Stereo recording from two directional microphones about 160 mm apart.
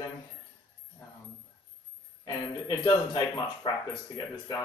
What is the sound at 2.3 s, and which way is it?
A man's voice, 25° left (ahead or behind).